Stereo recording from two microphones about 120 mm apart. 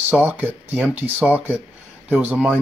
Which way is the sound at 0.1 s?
15° right (ahead or behind).